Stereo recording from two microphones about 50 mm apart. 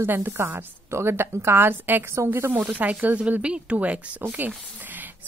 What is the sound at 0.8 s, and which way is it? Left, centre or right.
A woman's voice, right.